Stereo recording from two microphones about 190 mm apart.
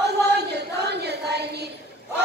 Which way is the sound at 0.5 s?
60° right (ahead or behind).